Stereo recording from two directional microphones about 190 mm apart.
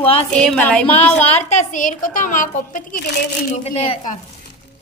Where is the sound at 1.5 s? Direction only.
40° left (ahead or behind).